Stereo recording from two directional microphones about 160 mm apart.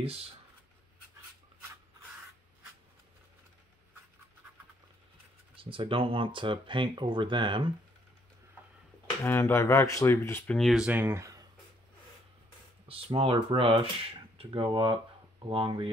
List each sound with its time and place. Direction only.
5.6 s speech: 35° right (ahead or behind)
9.2 s speech: 15° left (ahead or behind); by 11.4 s 20° right (ahead or behind)
12.8 s speech: 35° right (ahead or behind)